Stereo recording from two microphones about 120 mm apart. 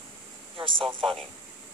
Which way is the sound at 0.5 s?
45° right (ahead or behind).